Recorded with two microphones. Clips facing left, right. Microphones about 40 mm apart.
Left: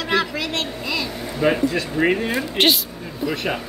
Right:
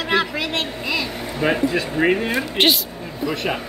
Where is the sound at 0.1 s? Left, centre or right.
Centre.